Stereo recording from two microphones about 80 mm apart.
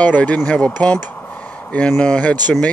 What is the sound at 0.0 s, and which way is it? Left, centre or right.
Speech, centre.